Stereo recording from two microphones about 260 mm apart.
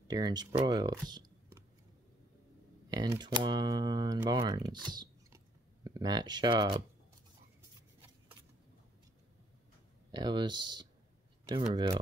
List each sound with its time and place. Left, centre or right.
0.1 s speech: centre
2.9 s speech: centre
5.9 s speech: centre
10.1 s speech: centre